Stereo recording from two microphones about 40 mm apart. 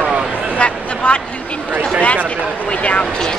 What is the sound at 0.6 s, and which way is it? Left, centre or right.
Speech, left.